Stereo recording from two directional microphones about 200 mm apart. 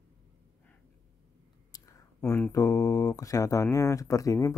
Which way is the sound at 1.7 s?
15° left (ahead or behind).